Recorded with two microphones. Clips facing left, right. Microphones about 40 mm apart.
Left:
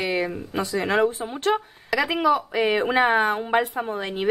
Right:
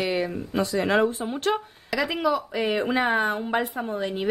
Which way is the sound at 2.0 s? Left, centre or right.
Centre.